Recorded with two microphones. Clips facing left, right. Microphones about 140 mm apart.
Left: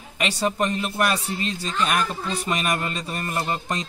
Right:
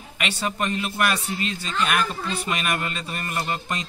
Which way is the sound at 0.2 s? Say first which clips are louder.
Left 3 dB; 30° left (ahead or behind).